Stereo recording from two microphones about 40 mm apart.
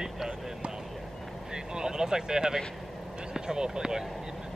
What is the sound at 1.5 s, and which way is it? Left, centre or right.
Speech, centre.